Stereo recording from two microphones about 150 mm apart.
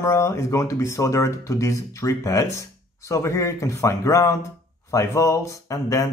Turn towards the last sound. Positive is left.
turn(degrees=20)  # may be behind; listen again after turning